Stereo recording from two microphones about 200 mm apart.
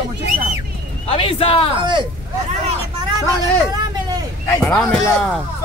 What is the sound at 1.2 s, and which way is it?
Speech, 25° left (ahead or behind).